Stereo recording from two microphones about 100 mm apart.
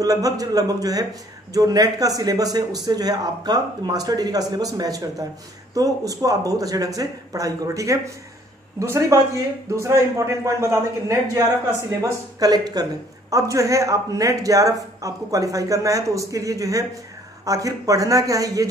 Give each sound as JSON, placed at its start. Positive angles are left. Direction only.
{"t": 0.0, "sound": "a man's voice", "side_deg": -35}